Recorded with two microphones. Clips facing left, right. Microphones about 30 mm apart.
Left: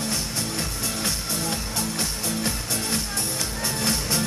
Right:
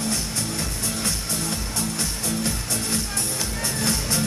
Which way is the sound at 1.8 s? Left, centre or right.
Centre.